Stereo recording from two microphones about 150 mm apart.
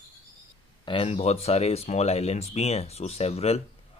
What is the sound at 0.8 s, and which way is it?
Speech, 35° left (ahead or behind).